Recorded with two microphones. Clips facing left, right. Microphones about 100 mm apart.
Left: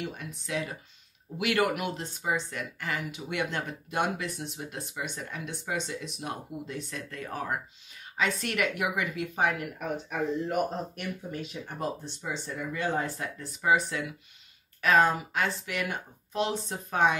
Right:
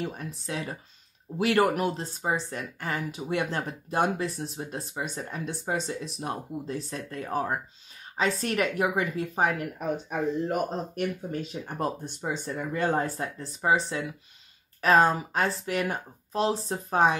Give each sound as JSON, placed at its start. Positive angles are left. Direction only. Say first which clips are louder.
{"t": 0.0, "sound": "speech", "louder": "right 3 dB", "side_deg": -40}
{"t": 11.6, "sound": "speech", "louder": "right 3 dB", "side_deg": -50}